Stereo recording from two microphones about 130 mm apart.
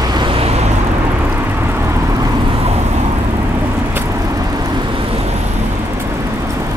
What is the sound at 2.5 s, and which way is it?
Vehicle, 50° right (ahead or behind).